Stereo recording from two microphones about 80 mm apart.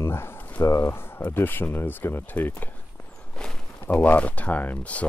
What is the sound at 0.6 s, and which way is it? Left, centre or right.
Speech, left.